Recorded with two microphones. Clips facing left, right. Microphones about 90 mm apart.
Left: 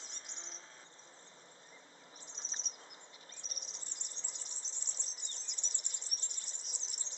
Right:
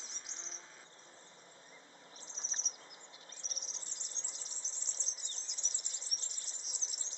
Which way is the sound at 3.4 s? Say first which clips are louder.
Right 2 dB; 50° left (ahead or behind).